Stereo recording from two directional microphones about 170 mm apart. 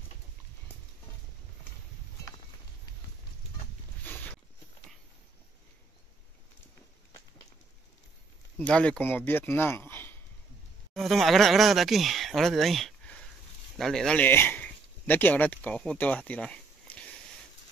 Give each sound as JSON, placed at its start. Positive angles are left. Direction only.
{"t": 4.0, "sound": "a sound", "side_deg": 10}
{"t": 8.5, "sound": "speech", "side_deg": 5}
{"t": 10.9, "sound": "speech", "side_deg": 0}